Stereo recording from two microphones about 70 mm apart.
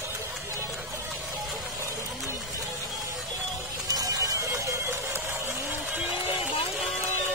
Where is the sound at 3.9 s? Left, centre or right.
Right.